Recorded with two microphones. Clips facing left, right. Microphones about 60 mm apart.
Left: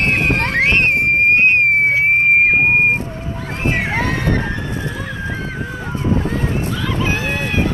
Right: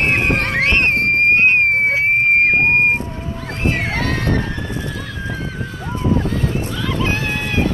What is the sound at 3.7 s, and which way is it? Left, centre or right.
Music, centre.